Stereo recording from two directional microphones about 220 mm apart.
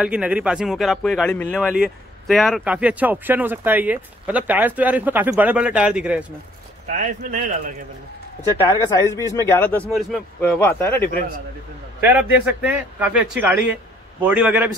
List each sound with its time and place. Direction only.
0.0 s speech: 5° right (ahead or behind)
6.9 s speech: 35° right (ahead or behind)
8.5 s speech: 20° left (ahead or behind)
12.0 s a man's voice: 5° right (ahead or behind)